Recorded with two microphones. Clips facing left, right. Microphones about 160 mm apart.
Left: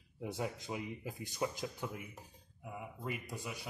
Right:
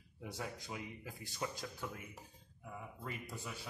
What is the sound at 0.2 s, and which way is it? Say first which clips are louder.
A man's voice: left 5 dB; 20° left (ahead or behind).